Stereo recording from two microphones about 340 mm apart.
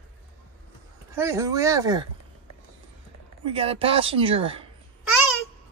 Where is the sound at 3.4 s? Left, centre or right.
Centre.